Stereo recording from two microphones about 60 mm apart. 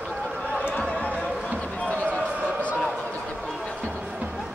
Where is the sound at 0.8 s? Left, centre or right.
Centre.